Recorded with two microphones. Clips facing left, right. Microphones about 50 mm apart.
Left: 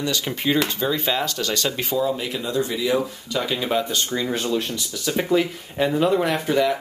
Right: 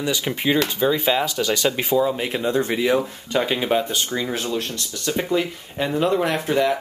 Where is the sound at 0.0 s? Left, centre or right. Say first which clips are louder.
Right 1 dB; centre.